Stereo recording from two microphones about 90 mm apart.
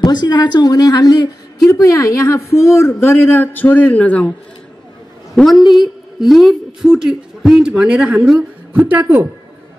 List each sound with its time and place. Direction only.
0.0 s a woman's voice: 50° left (ahead or behind); by 4.3 s 15° left (ahead or behind)
5.3 s a woman's voice: centre (ahead or behind); by 9.3 s 20° right (ahead or behind)